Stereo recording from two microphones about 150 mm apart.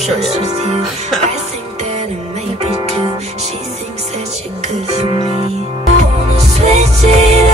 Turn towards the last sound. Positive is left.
turn(degrees=-45)  # may be behind; listen again after turning